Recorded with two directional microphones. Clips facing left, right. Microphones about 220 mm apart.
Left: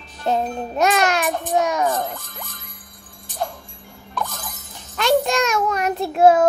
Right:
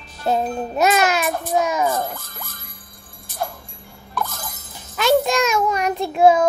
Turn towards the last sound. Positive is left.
turn(degrees=0)  # may be behind; listen again after turning